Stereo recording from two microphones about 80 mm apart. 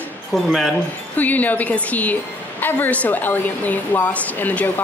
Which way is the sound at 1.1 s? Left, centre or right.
Left.